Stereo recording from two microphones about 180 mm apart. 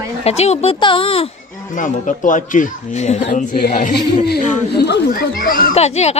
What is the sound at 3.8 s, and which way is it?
Speech, 60° left (ahead or behind).